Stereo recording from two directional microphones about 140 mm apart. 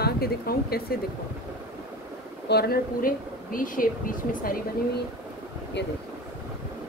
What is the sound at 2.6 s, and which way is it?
Speech, 90° left.